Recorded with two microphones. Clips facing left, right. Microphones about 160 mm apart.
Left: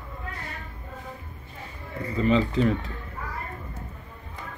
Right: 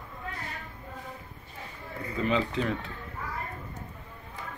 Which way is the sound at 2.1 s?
Centre (ahead or behind).